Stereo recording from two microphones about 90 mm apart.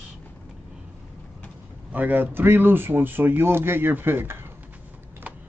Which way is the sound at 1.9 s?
20° right (ahead or behind).